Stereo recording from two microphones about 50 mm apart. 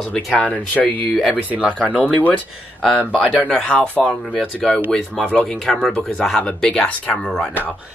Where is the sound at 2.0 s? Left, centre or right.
Left.